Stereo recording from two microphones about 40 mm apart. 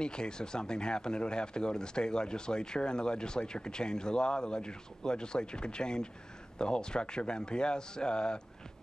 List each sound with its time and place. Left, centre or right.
0.0 s speech: centre